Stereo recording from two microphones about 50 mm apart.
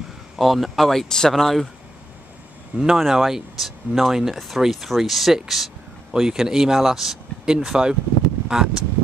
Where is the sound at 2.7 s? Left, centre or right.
Centre.